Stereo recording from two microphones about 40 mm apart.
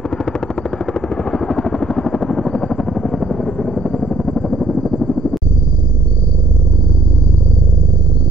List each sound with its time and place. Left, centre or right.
0.2 s vehicle: left
1.6 s helicopter: left
4.5 s vehicle: centre